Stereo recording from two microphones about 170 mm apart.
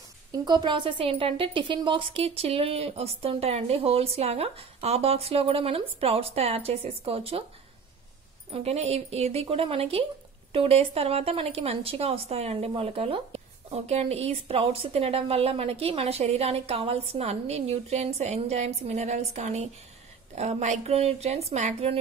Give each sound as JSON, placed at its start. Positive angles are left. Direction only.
{"t": 0.3, "sound": "speech", "side_deg": -25}
{"t": 8.5, "sound": "speech", "side_deg": -35}